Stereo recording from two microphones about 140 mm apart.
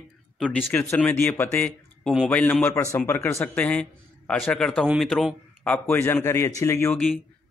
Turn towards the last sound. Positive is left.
turn(degrees=20)  # may be behind; listen again after turning